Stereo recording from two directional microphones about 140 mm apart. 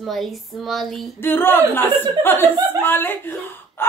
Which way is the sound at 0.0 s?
Centre (ahead or behind).